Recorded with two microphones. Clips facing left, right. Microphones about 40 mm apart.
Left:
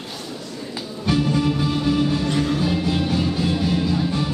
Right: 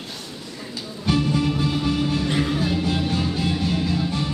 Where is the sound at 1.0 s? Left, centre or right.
Centre.